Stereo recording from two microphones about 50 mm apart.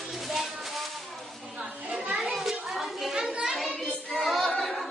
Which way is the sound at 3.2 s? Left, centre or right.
Centre.